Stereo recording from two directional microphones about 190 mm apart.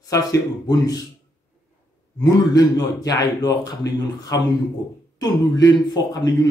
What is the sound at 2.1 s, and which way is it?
Speech, 20° left (ahead or behind).